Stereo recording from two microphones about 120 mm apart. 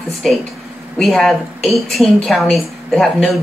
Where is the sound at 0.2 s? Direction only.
Centre (ahead or behind).